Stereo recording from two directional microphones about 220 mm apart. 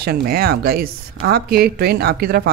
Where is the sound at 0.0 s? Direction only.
45° right (ahead or behind).